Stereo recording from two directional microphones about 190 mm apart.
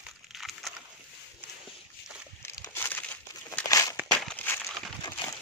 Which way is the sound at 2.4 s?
15° left (ahead or behind).